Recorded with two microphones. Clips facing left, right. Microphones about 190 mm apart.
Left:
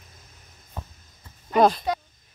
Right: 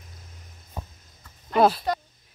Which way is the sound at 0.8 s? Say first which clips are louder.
Right 1 dB; 10° right (ahead or behind).